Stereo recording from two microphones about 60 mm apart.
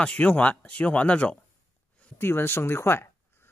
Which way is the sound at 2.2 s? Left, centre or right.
Left.